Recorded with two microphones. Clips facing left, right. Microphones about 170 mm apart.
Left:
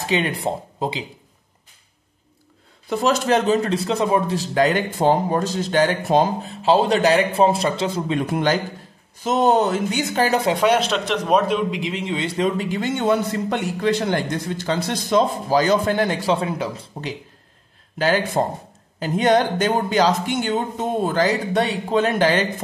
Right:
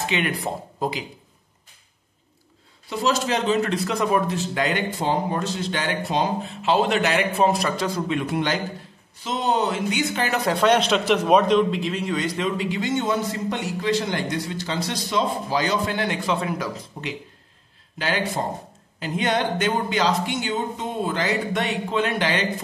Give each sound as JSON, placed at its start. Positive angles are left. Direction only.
{"t": 0.0, "sound": "speech", "side_deg": 30}
{"t": 2.9, "sound": "speech", "side_deg": 50}
{"t": 8.2, "sound": "a man's voice", "side_deg": 45}
{"t": 10.5, "sound": "a man's voice", "side_deg": 10}
{"t": 10.8, "sound": "a man's voice", "side_deg": 0}
{"t": 11.4, "sound": "speech", "side_deg": 10}
{"t": 12.4, "sound": "a man's voice", "side_deg": 45}
{"t": 17.9, "sound": "a man's voice", "side_deg": 45}